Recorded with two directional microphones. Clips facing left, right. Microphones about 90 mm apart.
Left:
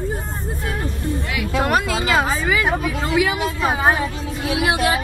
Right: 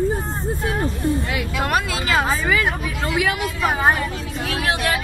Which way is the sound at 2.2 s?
10° left (ahead or behind).